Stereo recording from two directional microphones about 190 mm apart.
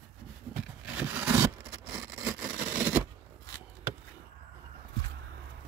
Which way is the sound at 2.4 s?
10° right (ahead or behind).